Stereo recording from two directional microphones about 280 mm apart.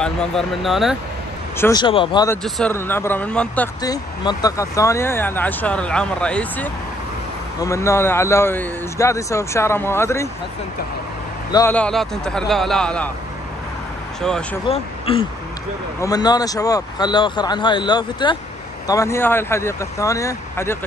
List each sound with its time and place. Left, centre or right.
0.0 s speech: centre
1.6 s speech: centre
2.4 s speech: centre
11.5 s speech: centre
14.2 s speech: centre
14.7 s speech: centre